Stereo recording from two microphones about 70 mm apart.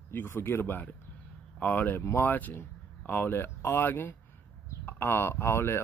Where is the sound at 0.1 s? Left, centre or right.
Left.